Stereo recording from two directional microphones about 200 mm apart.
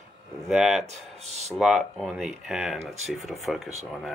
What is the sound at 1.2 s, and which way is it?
Speech, 35° right (ahead or behind).